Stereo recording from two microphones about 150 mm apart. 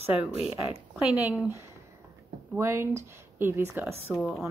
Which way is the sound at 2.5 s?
15° right (ahead or behind).